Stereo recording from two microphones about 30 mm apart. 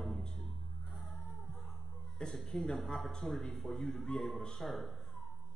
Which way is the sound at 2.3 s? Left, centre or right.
Centre.